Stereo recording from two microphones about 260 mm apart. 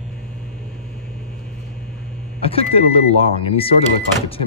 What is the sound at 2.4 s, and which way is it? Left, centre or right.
Speech, left.